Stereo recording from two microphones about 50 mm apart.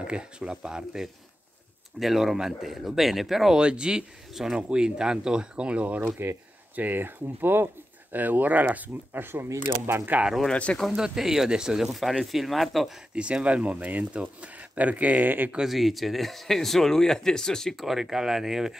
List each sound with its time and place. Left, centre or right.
0.0 s speech: centre
2.0 s speech: centre
3.5 s speech: centre
4.6 s speech: centre
6.2 s speech: right
6.7 s speech: right
10.5 s speech: left
10.9 s speech: centre
13.1 s speech: right
15.7 s speech: centre
17.7 s speech: centre